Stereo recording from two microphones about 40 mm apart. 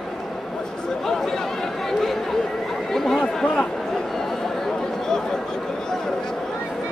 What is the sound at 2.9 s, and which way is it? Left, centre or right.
Chatter, centre.